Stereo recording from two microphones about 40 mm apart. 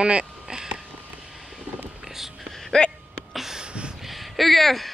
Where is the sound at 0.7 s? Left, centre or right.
Centre.